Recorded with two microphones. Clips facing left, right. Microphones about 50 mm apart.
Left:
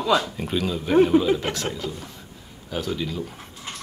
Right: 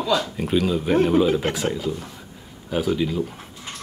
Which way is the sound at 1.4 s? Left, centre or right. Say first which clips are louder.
Right 3 dB; centre.